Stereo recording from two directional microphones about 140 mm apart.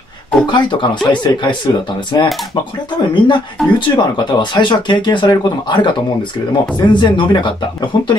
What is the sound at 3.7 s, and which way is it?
Speech, 35° left (ahead or behind).